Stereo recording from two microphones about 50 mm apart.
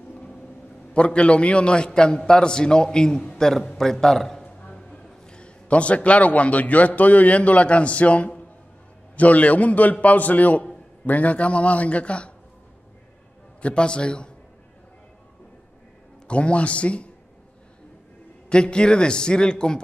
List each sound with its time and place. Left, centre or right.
0.9 s a man's voice: left
13.6 s a man's voice: left
16.3 s a man's voice: left
18.5 s a man's voice: centre